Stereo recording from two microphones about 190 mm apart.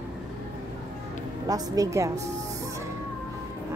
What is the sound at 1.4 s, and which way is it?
Speech, 20° right (ahead or behind).